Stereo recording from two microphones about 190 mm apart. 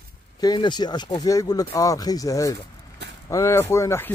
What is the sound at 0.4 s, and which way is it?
Speech, 20° left (ahead or behind).